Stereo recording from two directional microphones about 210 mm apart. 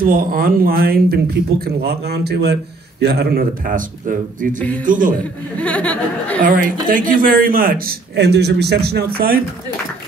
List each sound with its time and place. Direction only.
0.0 s speech: 45° right (ahead or behind)
4.8 s a man's voice: 40° right (ahead or behind)
5.6 s speech: 5° left (ahead or behind)
6.4 s speech: 40° right (ahead or behind)